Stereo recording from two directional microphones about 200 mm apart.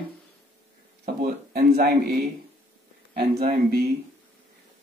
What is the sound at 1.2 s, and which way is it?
Speech, 50° right (ahead or behind).